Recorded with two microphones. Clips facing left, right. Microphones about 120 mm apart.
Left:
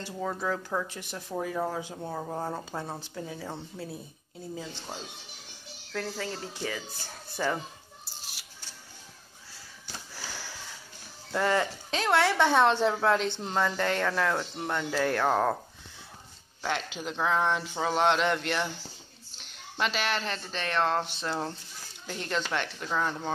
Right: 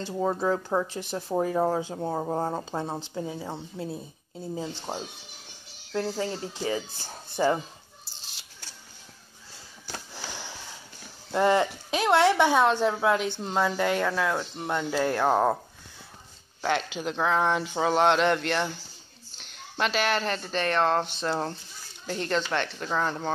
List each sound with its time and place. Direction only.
0.0 s speech: 25° right (ahead or behind)
4.9 s speech: 45° right (ahead or behind)
5.9 s speech: 25° right (ahead or behind)
8.2 s scissors: 25° right (ahead or behind)
10.1 s sniff: 20° right (ahead or behind)
11.3 s speech: 20° right (ahead or behind)
16.6 s speech: centre (ahead or behind)